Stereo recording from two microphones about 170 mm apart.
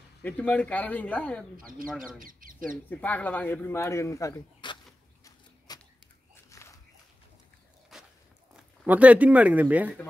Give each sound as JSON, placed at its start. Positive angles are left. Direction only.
{"t": 0.2, "sound": "speech", "side_deg": 10}
{"t": 2.1, "sound": "speech", "side_deg": -55}
{"t": 2.7, "sound": "speech", "side_deg": 10}
{"t": 5.7, "sound": "a sound", "side_deg": 25}
{"t": 6.5, "sound": "walk", "side_deg": 20}
{"t": 7.9, "sound": "walk", "side_deg": 0}
{"t": 8.5, "sound": "speech", "side_deg": -10}